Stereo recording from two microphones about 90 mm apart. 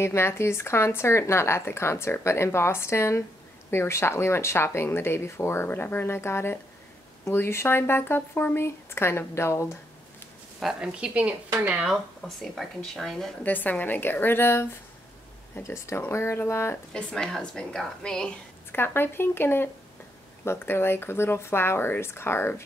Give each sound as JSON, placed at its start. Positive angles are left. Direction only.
{"t": 0.0, "sound": "speech", "side_deg": 30}
{"t": 10.6, "sound": "a woman's voice", "side_deg": -5}
{"t": 13.4, "sound": "speech", "side_deg": 20}
{"t": 16.7, "sound": "speech", "side_deg": 10}
{"t": 18.7, "sound": "speech", "side_deg": 25}